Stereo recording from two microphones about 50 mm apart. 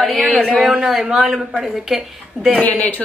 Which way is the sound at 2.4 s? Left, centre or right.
Right.